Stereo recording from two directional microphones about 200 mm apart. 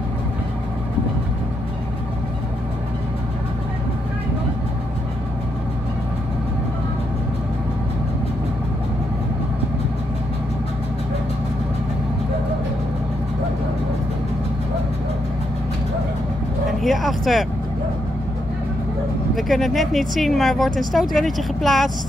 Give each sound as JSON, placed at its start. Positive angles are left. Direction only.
{"t": 16.8, "sound": "vehicle", "side_deg": 0}
{"t": 19.3, "sound": "speech", "side_deg": 0}